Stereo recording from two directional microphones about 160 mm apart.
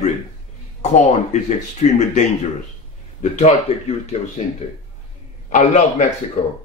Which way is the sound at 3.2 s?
45° left (ahead or behind).